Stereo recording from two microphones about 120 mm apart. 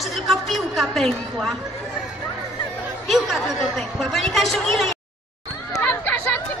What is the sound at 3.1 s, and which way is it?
A woman's voice, centre (ahead or behind).